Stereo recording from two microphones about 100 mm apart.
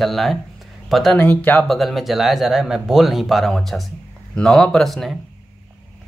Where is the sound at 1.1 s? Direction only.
20° left (ahead or behind).